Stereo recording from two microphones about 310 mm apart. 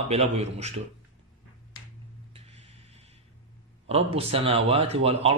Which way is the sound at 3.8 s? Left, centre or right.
Centre.